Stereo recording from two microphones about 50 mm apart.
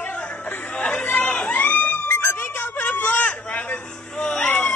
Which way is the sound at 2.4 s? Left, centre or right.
Left.